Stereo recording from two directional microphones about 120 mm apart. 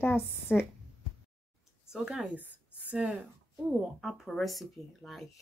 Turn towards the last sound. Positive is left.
turn(degrees=0)  # may be behind; listen again after turning